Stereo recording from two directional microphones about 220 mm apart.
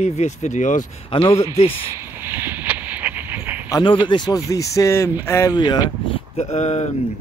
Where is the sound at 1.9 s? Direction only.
10° right (ahead or behind).